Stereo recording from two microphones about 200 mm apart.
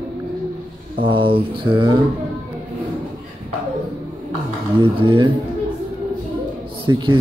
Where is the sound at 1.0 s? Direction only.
25° right (ahead or behind).